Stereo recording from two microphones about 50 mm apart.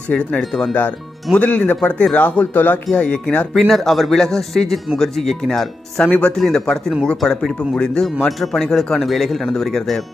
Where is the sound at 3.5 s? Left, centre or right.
Centre.